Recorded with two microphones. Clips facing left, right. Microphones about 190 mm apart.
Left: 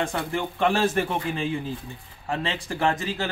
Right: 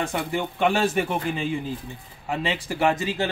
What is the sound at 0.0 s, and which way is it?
A man's voice, 5° right (ahead or behind).